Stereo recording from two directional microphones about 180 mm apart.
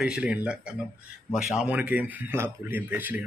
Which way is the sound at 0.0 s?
5° right (ahead or behind).